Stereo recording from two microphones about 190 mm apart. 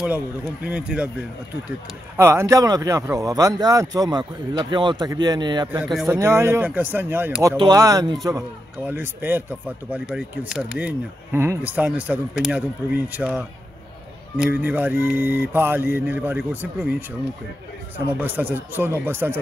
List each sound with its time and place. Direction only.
0.7 s a man's voice: 5° right (ahead or behind)
2.1 s a man's voice: 15° right (ahead or behind)
7.5 s a man's voice: 20° right (ahead or behind)
18.2 s a man's voice: 10° right (ahead or behind)